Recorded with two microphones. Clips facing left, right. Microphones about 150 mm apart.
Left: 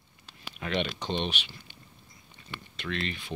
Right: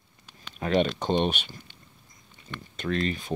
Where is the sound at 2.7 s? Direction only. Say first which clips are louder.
Right 7 dB; 40° right (ahead or behind).